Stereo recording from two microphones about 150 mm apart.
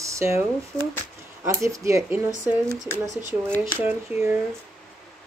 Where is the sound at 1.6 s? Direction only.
20° right (ahead or behind).